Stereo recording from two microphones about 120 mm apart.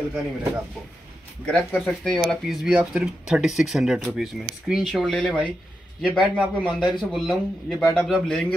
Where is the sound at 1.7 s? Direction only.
5° left (ahead or behind).